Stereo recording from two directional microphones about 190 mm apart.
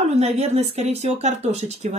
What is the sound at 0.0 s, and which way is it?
Speech, 35° right (ahead or behind).